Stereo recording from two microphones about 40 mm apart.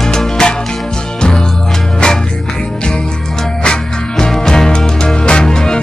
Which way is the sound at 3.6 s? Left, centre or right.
Centre.